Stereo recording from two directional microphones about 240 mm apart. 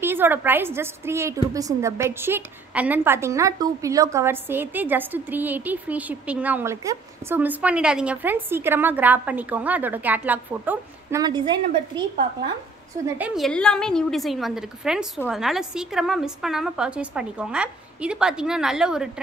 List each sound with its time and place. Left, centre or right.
0.0 s a woman's voice: centre
13.2 s a woman's voice: centre